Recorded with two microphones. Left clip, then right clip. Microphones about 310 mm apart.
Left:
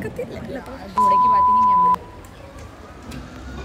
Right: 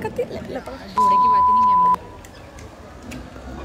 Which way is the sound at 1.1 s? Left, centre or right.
Centre.